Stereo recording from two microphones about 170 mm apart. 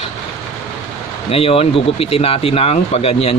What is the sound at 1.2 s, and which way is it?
Speech, 35° left (ahead or behind).